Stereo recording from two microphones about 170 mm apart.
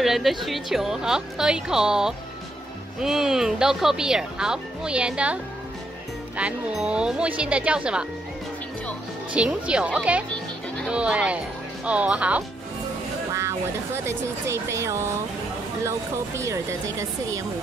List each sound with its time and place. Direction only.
0.0 s speech: centre (ahead or behind)
9.3 s speech: 5° right (ahead or behind)